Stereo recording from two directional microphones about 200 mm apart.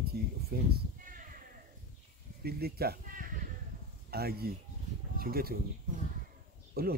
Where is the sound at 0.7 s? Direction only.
45° right (ahead or behind).